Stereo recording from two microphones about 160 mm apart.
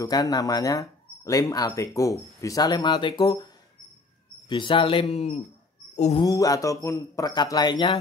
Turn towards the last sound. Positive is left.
turn(degrees=30)  # may be behind; listen again after turning